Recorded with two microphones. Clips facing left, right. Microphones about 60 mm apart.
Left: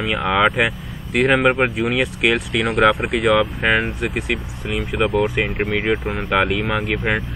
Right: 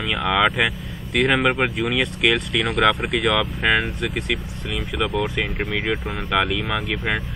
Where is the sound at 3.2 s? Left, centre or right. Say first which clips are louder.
Left 5 dB; left.